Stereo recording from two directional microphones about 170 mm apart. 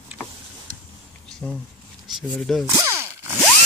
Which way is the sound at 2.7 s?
15° right (ahead or behind).